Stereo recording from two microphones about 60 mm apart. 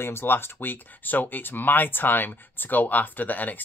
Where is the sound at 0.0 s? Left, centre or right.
Left.